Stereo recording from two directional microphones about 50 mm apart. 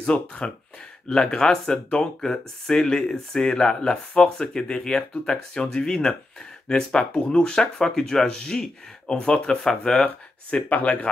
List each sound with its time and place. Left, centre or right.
0.0 s speech: left
10.0 s speech: left